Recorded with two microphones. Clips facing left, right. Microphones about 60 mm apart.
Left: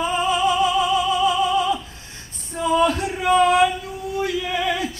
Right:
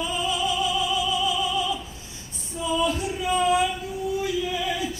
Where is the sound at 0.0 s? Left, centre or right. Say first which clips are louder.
Left 6 dB; left.